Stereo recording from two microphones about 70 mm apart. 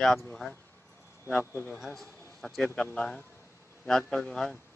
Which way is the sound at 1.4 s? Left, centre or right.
Left.